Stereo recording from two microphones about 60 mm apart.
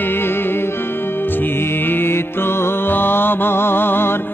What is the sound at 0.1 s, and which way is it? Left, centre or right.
Music, left.